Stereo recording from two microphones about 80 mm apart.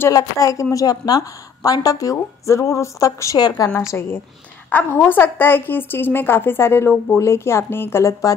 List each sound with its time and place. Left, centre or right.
0.1 s a woman's voice: left
3.3 s a woman's voice: left
3.8 s a woman's voice: left
4.6 s a woman's voice: left